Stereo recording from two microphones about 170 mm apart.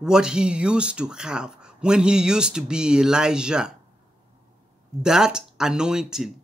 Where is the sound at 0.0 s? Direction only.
5° right (ahead or behind).